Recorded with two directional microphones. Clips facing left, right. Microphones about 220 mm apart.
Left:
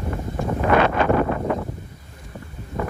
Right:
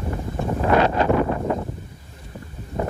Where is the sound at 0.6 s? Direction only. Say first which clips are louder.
Even; 30° right (ahead or behind).